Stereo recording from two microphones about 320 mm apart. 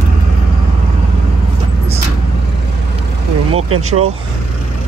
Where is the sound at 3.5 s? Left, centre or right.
Right.